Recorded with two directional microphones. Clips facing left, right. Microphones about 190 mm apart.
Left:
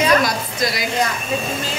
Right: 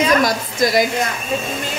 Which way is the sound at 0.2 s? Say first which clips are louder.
Right 4 dB; 50° right (ahead or behind).